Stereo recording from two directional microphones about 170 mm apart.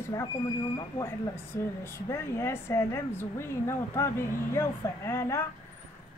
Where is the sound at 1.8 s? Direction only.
15° left (ahead or behind).